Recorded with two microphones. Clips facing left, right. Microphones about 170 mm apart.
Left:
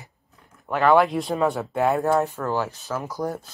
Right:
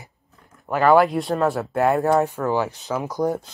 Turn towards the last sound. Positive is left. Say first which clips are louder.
# right 5 dB
turn(degrees=-20)  # may be behind; listen again after turning